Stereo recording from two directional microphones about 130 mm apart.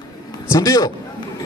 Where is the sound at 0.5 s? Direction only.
25° left (ahead or behind).